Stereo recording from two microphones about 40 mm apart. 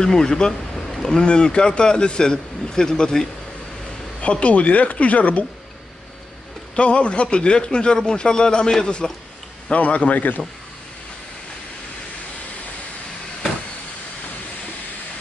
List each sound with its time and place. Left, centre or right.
0.0 s speech: centre
1.1 s speech: left
4.2 s speech: left
6.7 s speech: left